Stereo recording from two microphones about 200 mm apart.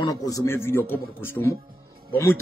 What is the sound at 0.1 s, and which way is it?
Speech, 20° left (ahead or behind).